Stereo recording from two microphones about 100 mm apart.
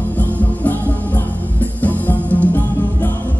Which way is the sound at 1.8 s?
15° left (ahead or behind).